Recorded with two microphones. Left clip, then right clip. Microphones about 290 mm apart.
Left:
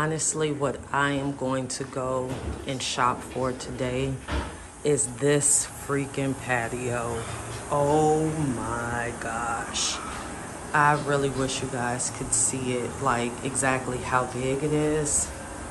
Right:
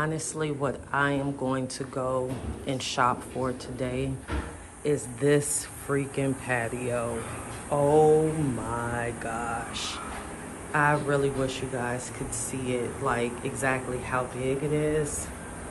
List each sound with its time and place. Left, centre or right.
0.0 s speech: centre
8.9 s speech: centre